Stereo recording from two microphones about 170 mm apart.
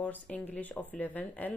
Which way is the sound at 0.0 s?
10° left (ahead or behind).